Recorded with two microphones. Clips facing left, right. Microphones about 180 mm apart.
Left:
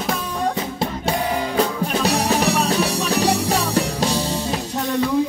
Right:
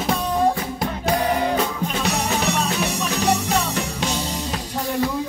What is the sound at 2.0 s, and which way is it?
Music, 35° left (ahead or behind).